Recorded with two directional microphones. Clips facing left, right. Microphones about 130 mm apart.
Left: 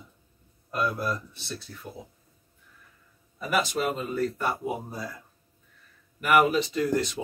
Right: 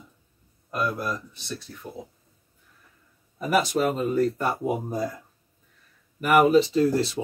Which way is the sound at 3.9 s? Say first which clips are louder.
Right 5 dB; 40° right (ahead or behind).